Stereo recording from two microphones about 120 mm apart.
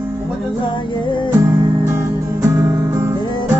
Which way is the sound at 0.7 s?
40° left (ahead or behind).